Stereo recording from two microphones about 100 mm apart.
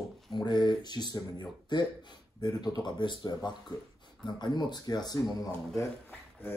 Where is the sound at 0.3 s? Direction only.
50° left (ahead or behind).